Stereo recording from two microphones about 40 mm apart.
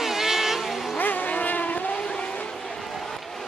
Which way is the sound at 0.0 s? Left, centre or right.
Centre.